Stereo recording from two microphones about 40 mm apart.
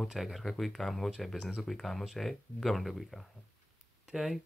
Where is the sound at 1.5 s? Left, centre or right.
Centre.